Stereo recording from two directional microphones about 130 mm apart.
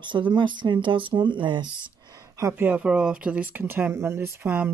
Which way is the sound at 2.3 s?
20° right (ahead or behind).